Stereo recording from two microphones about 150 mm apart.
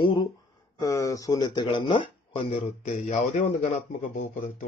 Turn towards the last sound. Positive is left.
turn(degrees=60)  # may be behind; listen again after turning